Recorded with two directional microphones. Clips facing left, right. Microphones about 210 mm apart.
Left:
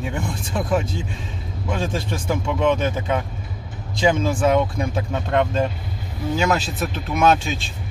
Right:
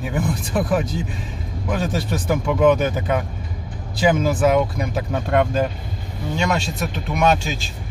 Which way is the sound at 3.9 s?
25° left (ahead or behind).